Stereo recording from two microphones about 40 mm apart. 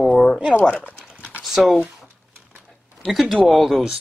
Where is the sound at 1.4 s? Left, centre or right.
Centre.